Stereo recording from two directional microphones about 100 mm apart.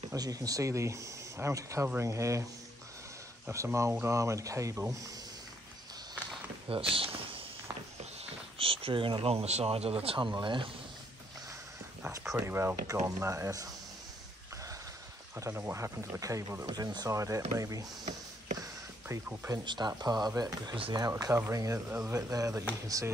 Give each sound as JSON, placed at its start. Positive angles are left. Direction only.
{"t": 0.1, "sound": "speech", "side_deg": -35}
{"t": 3.4, "sound": "speech", "side_deg": -25}
{"t": 6.7, "sound": "a sound", "side_deg": -65}
{"t": 8.0, "sound": "speech", "side_deg": -90}
{"t": 12.4, "sound": "speech", "side_deg": -25}
{"t": 15.3, "sound": "speech", "side_deg": -25}
{"t": 16.6, "sound": "speech", "side_deg": -45}
{"t": 18.6, "sound": "a sound", "side_deg": -35}
{"t": 19.2, "sound": "speech", "side_deg": -30}
{"t": 19.6, "sound": "speech", "side_deg": -50}
{"t": 21.1, "sound": "speech", "side_deg": -30}